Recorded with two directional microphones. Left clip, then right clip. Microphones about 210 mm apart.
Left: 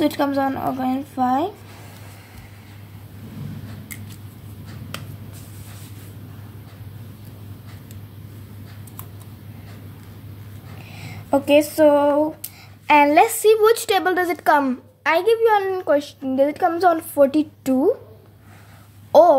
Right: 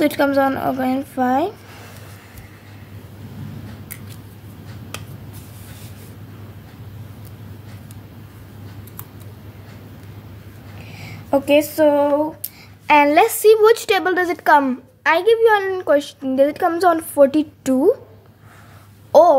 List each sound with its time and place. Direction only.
0.0 s a woman's voice: 25° right (ahead or behind)
11.0 s a woman's voice: 5° right (ahead or behind)
19.1 s speech: 5° right (ahead or behind)